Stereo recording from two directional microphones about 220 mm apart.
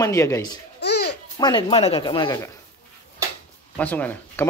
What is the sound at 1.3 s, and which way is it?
Speech, 20° left (ahead or behind).